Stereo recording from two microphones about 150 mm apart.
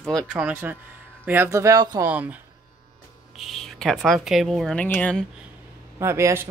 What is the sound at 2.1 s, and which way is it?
Speech, 10° right (ahead or behind).